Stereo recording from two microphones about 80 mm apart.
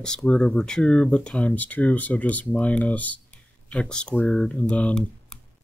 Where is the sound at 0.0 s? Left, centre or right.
Centre.